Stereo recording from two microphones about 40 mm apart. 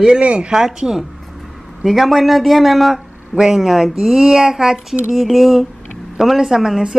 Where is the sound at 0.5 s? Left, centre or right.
Centre.